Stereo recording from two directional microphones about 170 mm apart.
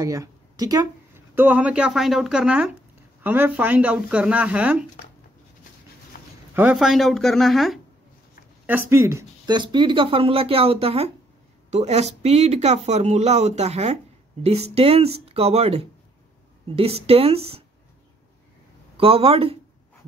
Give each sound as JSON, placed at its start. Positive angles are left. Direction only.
{"t": 0.0, "sound": "speech", "side_deg": -20}
{"t": 6.1, "sound": "a sound", "side_deg": 55}
{"t": 6.5, "sound": "speech", "side_deg": -5}
{"t": 8.6, "sound": "speech", "side_deg": -15}
{"t": 18.9, "sound": "speech", "side_deg": -35}